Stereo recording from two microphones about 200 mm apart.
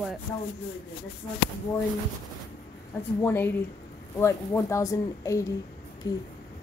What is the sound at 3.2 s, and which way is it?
Speech, 10° left (ahead or behind).